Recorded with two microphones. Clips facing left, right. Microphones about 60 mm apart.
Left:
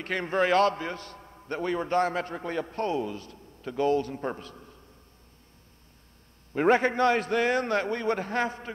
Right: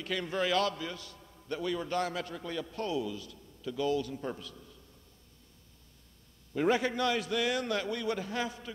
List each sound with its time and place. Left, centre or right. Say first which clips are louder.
0.0 s a man's voice: left 6 dB; left
6.5 s a man's voice: left 6 dB; left